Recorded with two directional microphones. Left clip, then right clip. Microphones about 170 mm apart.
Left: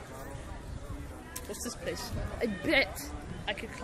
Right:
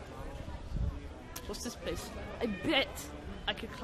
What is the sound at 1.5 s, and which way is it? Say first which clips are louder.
Speech: left 2 dB; 15° right (ahead or behind).